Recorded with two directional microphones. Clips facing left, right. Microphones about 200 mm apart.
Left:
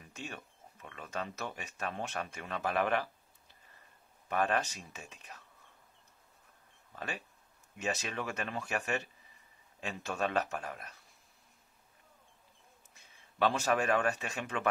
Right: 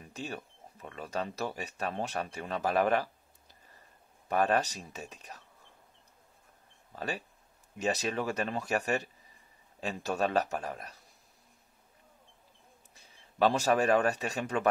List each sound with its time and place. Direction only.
0.1 s speech: 35° right (ahead or behind)
4.3 s speech: 40° right (ahead or behind)
6.9 s speech: 35° right (ahead or behind)
12.9 s speech: 35° right (ahead or behind)